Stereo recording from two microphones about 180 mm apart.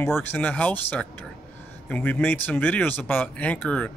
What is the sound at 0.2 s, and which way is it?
Speech, 10° left (ahead or behind).